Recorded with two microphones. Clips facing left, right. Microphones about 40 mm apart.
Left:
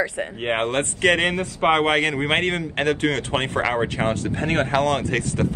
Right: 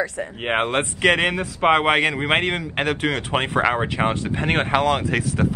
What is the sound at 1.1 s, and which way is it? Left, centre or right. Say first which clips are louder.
Speech: even; centre.